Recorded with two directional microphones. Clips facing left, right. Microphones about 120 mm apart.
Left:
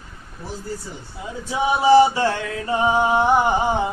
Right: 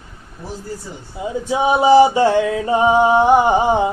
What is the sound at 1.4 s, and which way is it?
Mantra, 20° right (ahead or behind).